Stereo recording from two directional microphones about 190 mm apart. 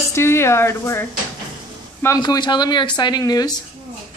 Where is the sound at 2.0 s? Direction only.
20° left (ahead or behind).